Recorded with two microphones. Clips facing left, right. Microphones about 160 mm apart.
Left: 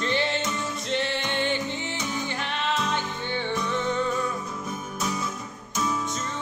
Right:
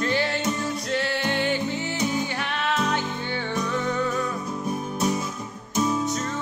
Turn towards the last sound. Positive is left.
turn(degrees=-30)  # may be behind; listen again after turning